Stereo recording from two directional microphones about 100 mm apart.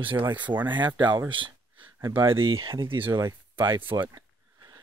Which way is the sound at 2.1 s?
60° right (ahead or behind).